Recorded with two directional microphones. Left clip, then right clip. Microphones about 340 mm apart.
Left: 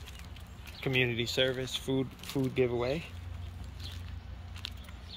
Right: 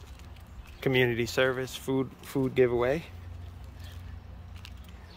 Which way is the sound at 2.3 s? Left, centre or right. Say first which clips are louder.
Right 5 dB; right.